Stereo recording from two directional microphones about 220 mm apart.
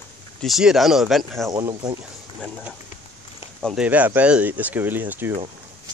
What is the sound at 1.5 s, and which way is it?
Speech, 20° right (ahead or behind).